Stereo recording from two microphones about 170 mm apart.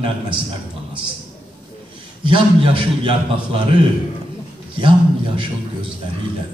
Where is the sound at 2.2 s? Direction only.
30° right (ahead or behind).